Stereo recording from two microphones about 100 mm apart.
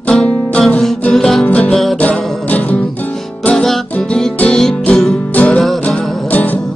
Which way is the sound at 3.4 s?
5° left (ahead or behind).